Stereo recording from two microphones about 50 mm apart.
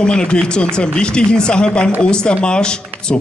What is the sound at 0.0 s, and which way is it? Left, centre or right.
A man's voice, centre.